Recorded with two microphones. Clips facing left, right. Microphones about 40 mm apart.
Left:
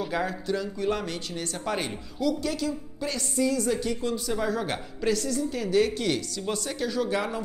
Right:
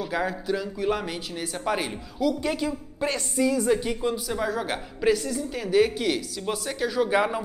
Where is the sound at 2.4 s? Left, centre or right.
Right.